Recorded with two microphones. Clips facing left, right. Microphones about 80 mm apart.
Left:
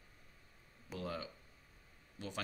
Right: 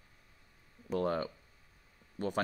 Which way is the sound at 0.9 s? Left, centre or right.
Right.